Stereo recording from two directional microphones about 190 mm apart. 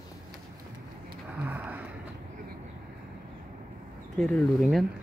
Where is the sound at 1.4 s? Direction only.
10° right (ahead or behind).